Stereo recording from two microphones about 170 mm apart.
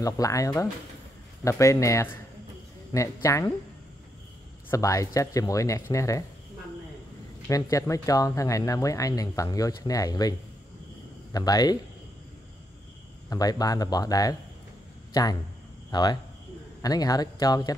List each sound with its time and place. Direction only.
0.0 s speech: 20° left (ahead or behind)
4.6 s speech: 20° left (ahead or behind)
7.7 s speech: 20° left (ahead or behind)
11.3 s speech: 20° left (ahead or behind)
13.3 s speech: 20° left (ahead or behind)
15.9 s speech: 25° left (ahead or behind)